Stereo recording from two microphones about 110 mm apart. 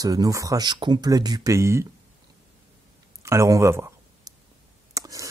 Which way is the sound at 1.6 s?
25° right (ahead or behind).